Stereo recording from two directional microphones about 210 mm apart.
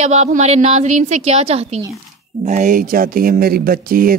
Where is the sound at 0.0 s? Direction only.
35° right (ahead or behind).